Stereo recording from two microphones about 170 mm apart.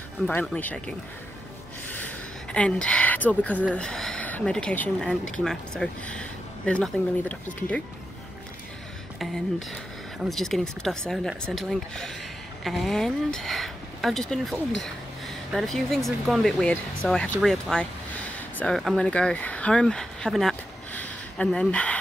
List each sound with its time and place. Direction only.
0.3 s speech: 10° left (ahead or behind)
1.9 s a sound: 10° left (ahead or behind)
3.6 s speech: 5° left (ahead or behind)
9.2 s speech: centre (ahead or behind)